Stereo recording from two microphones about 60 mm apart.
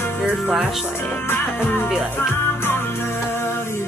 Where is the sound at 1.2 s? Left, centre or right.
Left.